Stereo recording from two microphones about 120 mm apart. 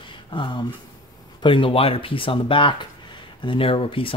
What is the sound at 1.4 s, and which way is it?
Speech, 45° left (ahead or behind).